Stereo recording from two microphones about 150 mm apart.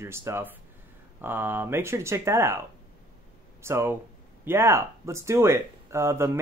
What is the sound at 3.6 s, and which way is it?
Speech, 15° right (ahead or behind).